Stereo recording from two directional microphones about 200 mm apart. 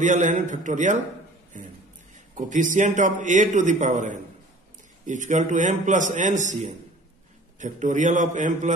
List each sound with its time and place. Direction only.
0.0 s a man's voice: 35° right (ahead or behind)
1.5 s a sound: 40° right (ahead or behind)
2.1 s a man's voice: 40° right (ahead or behind)